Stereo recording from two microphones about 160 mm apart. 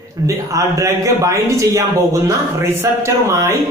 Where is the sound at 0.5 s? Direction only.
20° right (ahead or behind).